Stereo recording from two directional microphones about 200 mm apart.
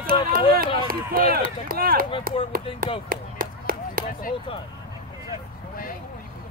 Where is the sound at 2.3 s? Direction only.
45° right (ahead or behind).